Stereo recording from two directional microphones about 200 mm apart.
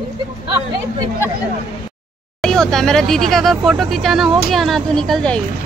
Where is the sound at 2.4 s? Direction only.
Centre (ahead or behind).